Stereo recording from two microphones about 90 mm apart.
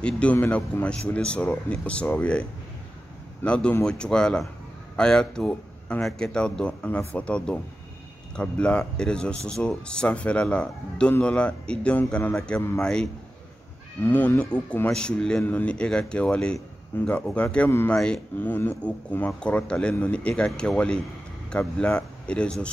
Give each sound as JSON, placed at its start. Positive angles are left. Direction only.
{"t": 0.0, "sound": "speech", "side_deg": 15}
{"t": 3.4, "sound": "speech", "side_deg": 15}
{"t": 14.0, "sound": "speech", "side_deg": 25}